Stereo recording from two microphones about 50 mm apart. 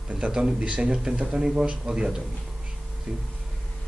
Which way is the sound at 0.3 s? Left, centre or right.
Centre.